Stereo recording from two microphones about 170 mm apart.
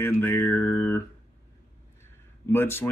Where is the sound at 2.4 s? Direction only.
15° left (ahead or behind).